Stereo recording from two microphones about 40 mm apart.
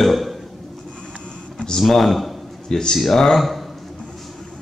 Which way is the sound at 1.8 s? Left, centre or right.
Centre.